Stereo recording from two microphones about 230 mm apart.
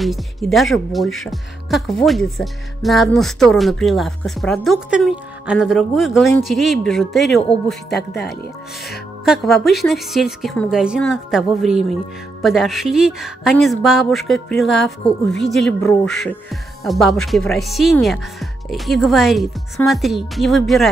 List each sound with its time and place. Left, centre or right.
0.0 s a woman's voice: centre